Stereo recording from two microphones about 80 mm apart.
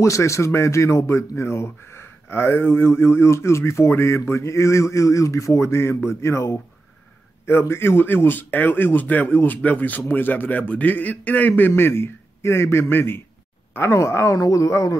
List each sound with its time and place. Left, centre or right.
0.0 s a man's voice: left